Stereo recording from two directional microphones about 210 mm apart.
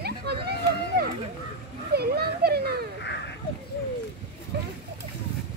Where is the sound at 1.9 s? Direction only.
50° right (ahead or behind).